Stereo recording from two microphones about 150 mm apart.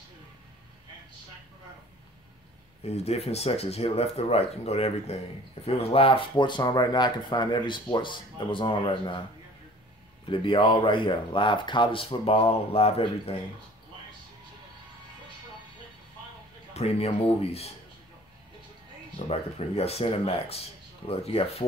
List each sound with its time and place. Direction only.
2.8 s speech: 45° left (ahead or behind)
10.3 s speech: 35° left (ahead or behind)
16.7 s speech: 45° left (ahead or behind)
19.1 s speech: 45° left (ahead or behind)